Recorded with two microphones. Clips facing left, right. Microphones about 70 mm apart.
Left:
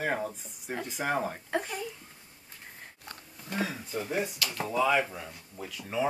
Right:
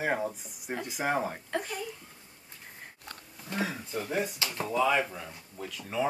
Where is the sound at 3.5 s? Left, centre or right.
Centre.